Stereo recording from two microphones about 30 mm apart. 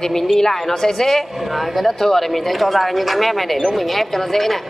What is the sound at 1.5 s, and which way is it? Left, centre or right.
Speech, centre.